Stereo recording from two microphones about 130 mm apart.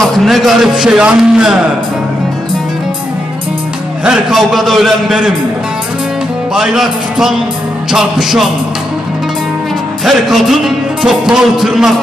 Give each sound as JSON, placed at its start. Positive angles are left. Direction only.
{"t": 0.0, "sound": "speech", "side_deg": 0}
{"t": 4.0, "sound": "a man's voice", "side_deg": -5}
{"t": 6.5, "sound": "a man's voice", "side_deg": -5}
{"t": 10.0, "sound": "a man's voice", "side_deg": 0}